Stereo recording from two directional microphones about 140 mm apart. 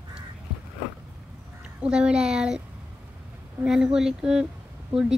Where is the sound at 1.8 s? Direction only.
5° right (ahead or behind).